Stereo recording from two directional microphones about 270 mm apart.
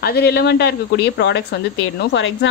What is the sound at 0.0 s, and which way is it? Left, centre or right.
Speech, left.